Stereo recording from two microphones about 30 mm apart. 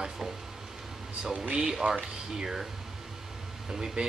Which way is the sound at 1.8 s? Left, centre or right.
Right.